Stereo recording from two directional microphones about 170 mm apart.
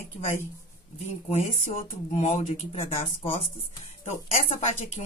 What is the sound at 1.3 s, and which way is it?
A woman's voice, 40° left (ahead or behind).